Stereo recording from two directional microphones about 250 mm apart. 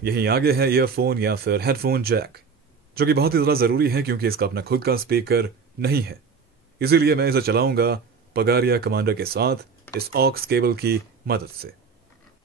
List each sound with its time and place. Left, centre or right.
0.0 s a man's voice: right